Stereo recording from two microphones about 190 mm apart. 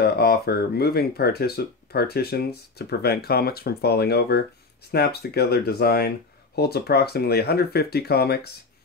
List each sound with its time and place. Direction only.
0.0 s speech: 55° left (ahead or behind)